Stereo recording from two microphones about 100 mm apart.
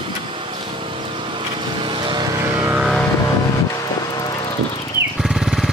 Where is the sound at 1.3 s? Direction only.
55° right (ahead or behind).